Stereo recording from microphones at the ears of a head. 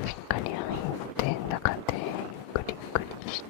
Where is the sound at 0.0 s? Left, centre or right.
Left.